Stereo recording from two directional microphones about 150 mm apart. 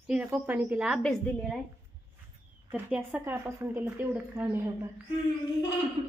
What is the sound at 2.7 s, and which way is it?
A woman's voice, 10° right (ahead or behind).